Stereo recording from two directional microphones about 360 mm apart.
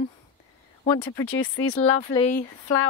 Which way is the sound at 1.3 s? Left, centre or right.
Left.